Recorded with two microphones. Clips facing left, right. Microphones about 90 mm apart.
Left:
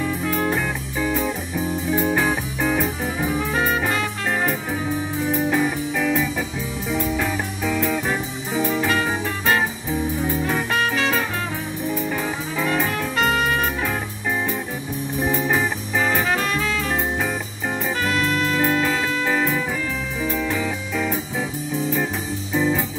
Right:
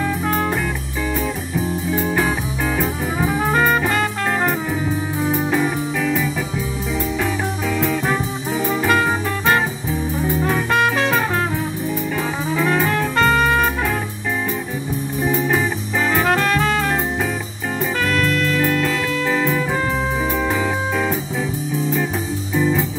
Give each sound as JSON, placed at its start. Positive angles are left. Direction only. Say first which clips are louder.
{"t": 0.2, "sound": "music", "louder": "right 2 dB", "side_deg": -40}
{"t": 3.4, "sound": "brass instrument", "louder": "right 8 dB", "side_deg": -55}
{"t": 5.3, "sound": "music", "louder": "right 1 dB", "side_deg": 0}
{"t": 7.6, "sound": "music", "louder": "even", "side_deg": 5}
{"t": 8.6, "sound": "music", "louder": "right 4 dB", "side_deg": -50}
{"t": 10.7, "sound": "music", "louder": "right 6 dB", "side_deg": -55}
{"t": 13.1, "sound": "music", "louder": "right 4 dB", "side_deg": -45}
{"t": 15.3, "sound": "music", "louder": "right 3 dB", "side_deg": 0}
{"t": 16.3, "sound": "music", "louder": "right 5 dB", "side_deg": -60}
{"t": 18.0, "sound": "music", "louder": "right 2 dB", "side_deg": -55}
{"t": 20.9, "sound": "music", "louder": "right 3 dB", "side_deg": -5}
{"t": 22.6, "sound": "music", "louder": "right 2 dB", "side_deg": 5}